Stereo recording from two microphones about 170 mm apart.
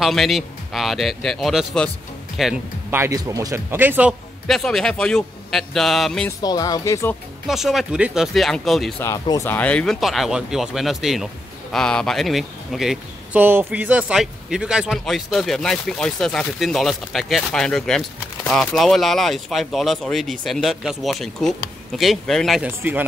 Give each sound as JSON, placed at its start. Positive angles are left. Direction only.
{"t": 0.0, "sound": "speech", "side_deg": 0}
{"t": 2.9, "sound": "speech", "side_deg": -15}
{"t": 4.5, "sound": "speech", "side_deg": 0}
{"t": 6.2, "sound": "speech", "side_deg": 20}
{"t": 7.4, "sound": "speech", "side_deg": 0}
{"t": 9.0, "sound": "speech", "side_deg": 20}
{"t": 22.7, "sound": "speech", "side_deg": -10}